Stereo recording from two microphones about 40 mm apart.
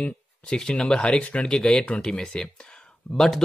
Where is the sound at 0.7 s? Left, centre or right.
Left.